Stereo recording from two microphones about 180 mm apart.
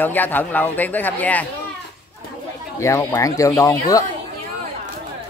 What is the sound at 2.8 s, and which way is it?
Speech, 15° left (ahead or behind).